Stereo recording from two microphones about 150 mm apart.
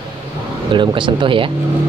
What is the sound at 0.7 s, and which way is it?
Speech, 35° right (ahead or behind).